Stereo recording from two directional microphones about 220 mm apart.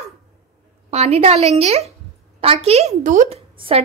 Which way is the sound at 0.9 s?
30° right (ahead or behind).